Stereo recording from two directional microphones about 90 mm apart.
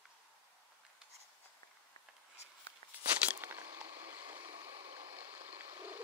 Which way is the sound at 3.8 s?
80° right.